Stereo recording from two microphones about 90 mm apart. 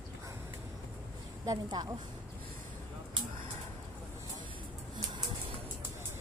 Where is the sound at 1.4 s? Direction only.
45° right (ahead or behind).